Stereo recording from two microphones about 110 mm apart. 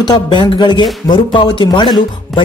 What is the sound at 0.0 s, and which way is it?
Speech, 45° left (ahead or behind).